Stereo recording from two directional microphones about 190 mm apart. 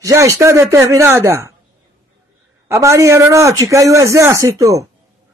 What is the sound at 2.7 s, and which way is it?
A man's voice, 15° right (ahead or behind).